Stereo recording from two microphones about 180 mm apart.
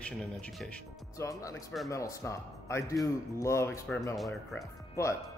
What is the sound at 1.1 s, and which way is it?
Speech, 15° left (ahead or behind).